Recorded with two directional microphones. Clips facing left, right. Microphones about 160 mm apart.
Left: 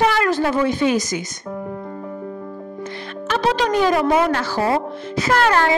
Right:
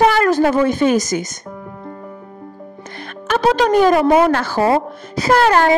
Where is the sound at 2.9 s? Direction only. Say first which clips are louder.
Right 4 dB; 50° right (ahead or behind).